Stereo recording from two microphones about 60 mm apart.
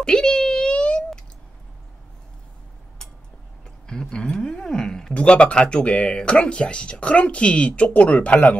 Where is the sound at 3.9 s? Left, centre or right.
Centre.